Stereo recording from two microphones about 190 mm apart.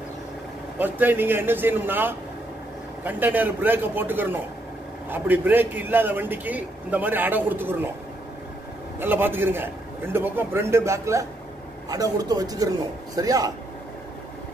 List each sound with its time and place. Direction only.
0.7 s a man's voice: 10° right (ahead or behind)
9.0 s a man's voice: 10° right (ahead or behind)